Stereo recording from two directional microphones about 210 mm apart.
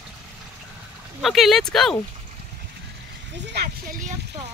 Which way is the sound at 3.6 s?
50° right (ahead or behind).